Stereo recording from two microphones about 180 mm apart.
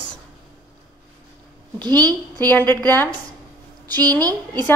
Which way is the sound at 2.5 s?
10° left (ahead or behind).